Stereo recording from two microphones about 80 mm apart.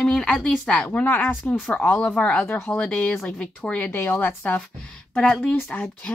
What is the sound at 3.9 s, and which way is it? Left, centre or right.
A woman's voice, left.